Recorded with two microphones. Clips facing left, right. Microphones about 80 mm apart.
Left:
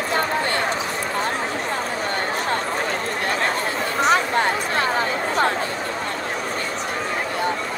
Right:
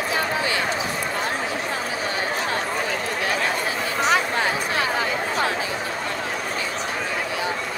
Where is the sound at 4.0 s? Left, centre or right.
Left.